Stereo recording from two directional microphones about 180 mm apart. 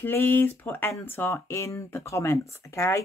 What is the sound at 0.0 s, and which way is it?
Speech, 10° left (ahead or behind).